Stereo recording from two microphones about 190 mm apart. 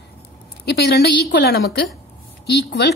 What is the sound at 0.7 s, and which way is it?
A woman's voice, 55° left (ahead or behind).